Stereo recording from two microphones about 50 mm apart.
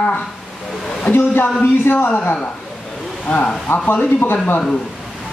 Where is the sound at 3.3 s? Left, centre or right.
Left.